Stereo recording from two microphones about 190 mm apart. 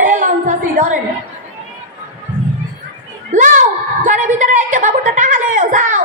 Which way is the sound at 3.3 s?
40° right (ahead or behind).